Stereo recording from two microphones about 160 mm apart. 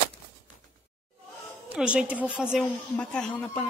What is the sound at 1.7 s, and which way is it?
Speech, 5° right (ahead or behind).